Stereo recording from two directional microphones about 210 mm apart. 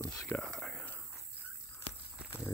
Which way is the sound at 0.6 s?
5° left (ahead or behind).